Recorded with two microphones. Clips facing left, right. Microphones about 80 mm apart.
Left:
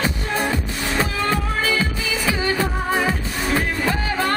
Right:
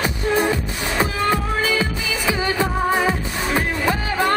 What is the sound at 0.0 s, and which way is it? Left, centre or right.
Music, centre.